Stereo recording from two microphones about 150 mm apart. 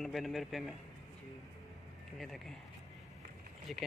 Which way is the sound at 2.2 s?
Centre (ahead or behind).